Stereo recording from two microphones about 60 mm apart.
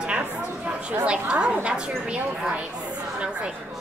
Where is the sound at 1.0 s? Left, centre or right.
Centre.